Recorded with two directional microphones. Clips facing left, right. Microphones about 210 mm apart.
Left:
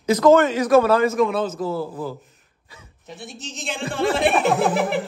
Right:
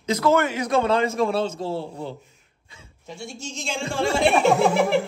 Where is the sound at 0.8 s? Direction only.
25° right (ahead or behind).